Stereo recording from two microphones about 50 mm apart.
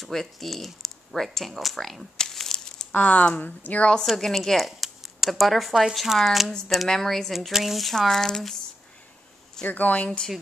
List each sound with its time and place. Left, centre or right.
0.0 s speech: centre
2.3 s crumpling: centre
2.9 s speech: left
4.2 s speech: centre
9.7 s speech: left